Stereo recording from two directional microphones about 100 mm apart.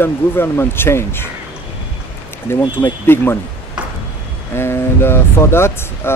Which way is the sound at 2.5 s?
20° left (ahead or behind).